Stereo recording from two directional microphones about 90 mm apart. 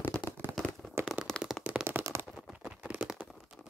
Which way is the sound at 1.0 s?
25° right (ahead or behind).